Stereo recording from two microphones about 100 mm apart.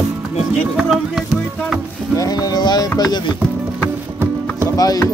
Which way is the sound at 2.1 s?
40° left (ahead or behind).